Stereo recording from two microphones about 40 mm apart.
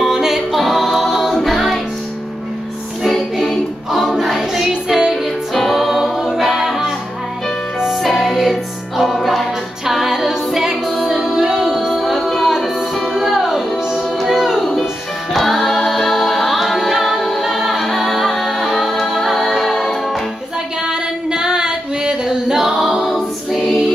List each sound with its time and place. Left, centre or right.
0.0 s music: centre
3.3 s choir: centre
4.6 s music: centre
5.5 s music: centre
7.9 s music: centre
9.1 s a capella: centre
13.1 s music: centre
15.3 s a capella: centre
20.8 s singing: centre
22.6 s a capella: centre